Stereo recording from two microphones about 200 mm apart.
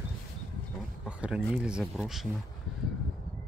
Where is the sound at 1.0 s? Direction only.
5° right (ahead or behind).